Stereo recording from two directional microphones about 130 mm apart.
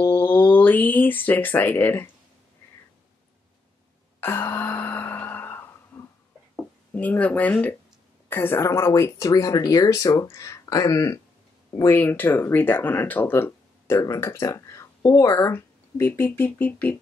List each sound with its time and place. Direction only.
0.0 s a sound: 15° left (ahead or behind)
4.2 s sigh: 20° left (ahead or behind)
6.9 s speech: 10° left (ahead or behind)